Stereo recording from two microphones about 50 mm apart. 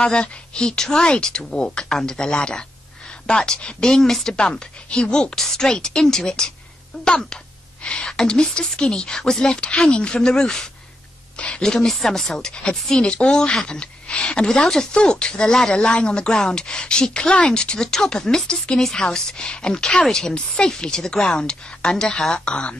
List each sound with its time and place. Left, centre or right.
0.0 s speech: centre
3.9 s speech: centre